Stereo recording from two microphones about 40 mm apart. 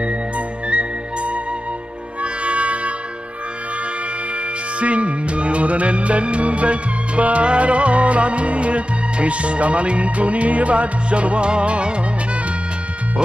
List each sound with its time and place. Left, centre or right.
0.7 s music: right
4.7 s music: right